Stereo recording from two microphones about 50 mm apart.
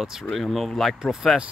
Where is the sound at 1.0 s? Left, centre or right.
Centre.